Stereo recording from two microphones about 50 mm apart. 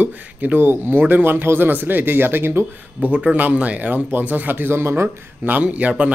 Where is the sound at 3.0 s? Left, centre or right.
Right.